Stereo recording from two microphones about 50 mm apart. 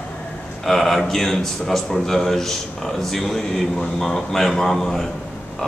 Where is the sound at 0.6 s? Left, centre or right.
Centre.